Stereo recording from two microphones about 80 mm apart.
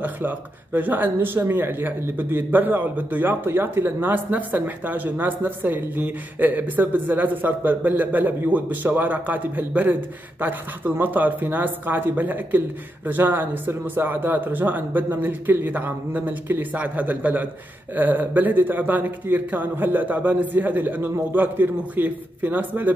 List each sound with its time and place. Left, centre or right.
0.7 s a man's voice: right